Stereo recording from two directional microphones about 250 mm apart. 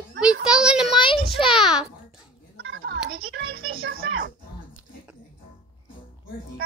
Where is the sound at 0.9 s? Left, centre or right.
Centre.